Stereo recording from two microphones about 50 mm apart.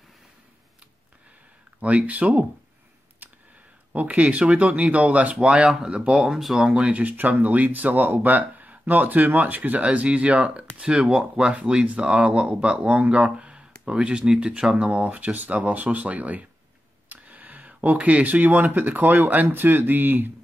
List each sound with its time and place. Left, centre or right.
1.8 s speech: right
3.2 s a sound: right
3.9 s speech: right
6.2 s speech: centre; by 20.2 s right